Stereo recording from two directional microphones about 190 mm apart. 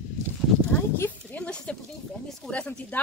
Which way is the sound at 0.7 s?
10° left (ahead or behind).